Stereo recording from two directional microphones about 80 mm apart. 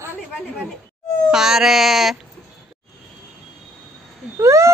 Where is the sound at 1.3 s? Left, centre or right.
Centre.